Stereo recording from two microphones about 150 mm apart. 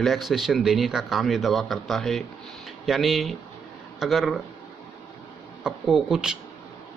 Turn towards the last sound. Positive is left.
turn(degrees=-5)  # may be behind; listen again after turning